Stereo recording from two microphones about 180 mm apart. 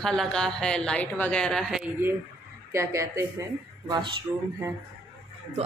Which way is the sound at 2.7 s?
15° right (ahead or behind).